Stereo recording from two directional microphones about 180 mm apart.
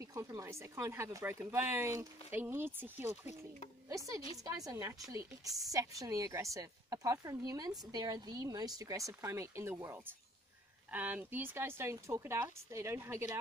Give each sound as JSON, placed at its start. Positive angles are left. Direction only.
{"t": 0.0, "sound": "speech", "side_deg": -15}
{"t": 3.3, "sound": "speech", "side_deg": 35}
{"t": 3.9, "sound": "speech", "side_deg": -15}